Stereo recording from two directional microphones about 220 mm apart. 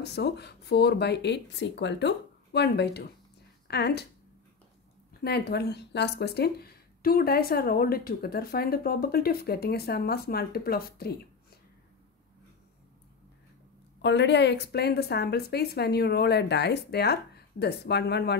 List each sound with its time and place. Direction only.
0.0 s speech: 50° left (ahead or behind)
5.2 s speech: 45° left (ahead or behind)
14.0 s speech: 50° left (ahead or behind)